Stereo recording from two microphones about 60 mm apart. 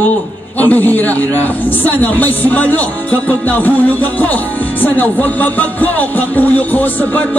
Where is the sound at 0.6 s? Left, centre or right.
Left.